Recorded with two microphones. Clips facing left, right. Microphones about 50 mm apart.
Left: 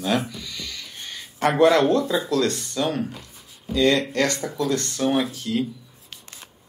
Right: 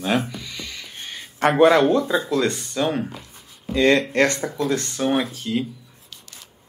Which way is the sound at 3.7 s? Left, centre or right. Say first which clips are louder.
Right 2 dB; right.